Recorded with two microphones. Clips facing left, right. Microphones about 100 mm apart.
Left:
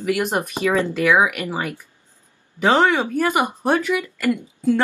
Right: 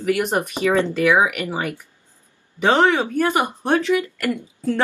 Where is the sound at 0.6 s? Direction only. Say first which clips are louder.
Right 1 dB; 20° right (ahead or behind).